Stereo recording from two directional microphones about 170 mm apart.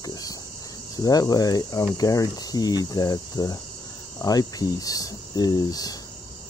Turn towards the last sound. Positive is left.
turn(degrees=20)  # may be behind; listen again after turning